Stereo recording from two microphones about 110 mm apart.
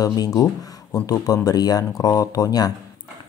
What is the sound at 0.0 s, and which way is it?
Speech, 35° left (ahead or behind).